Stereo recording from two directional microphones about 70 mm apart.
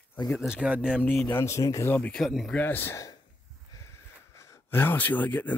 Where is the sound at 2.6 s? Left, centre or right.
Left.